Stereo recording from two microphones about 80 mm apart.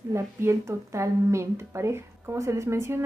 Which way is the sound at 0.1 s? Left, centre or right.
Right.